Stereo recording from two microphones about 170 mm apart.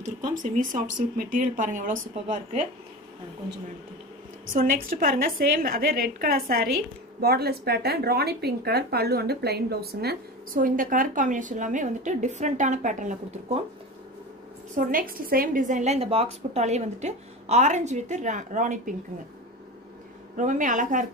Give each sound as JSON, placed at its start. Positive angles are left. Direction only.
{"t": 0.0, "sound": "a woman's voice", "side_deg": -50}
{"t": 4.5, "sound": "speech", "side_deg": -55}
{"t": 14.8, "sound": "a woman's voice", "side_deg": -55}
{"t": 20.3, "sound": "a woman's voice", "side_deg": -50}